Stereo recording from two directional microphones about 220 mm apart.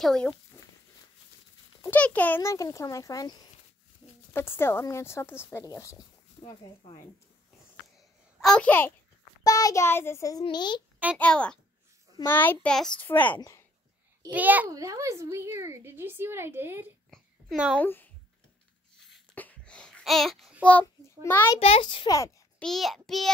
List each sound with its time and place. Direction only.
0.0 s child singing: 5° left (ahead or behind)
1.8 s speech: 5° left (ahead or behind)
8.4 s a child's voice: 5° left (ahead or behind); by 10.8 s 20° left (ahead or behind)
11.1 s child singing: 5° left (ahead or behind)
12.2 s speech: 10° left (ahead or behind)
14.2 s a child's voice: 10° right (ahead or behind)
17.1 s babbling: centre (ahead or behind)
17.8 s speech: 10° left (ahead or behind)
19.0 s babbling: 5° left (ahead or behind)
21.5 s a child's voice: 25° left (ahead or behind)
22.6 s child singing: centre (ahead or behind)